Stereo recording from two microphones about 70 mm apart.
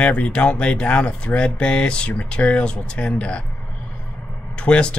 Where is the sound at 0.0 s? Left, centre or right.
Centre.